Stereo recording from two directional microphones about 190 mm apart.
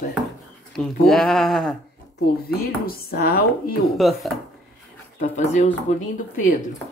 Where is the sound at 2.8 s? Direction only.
55° left (ahead or behind).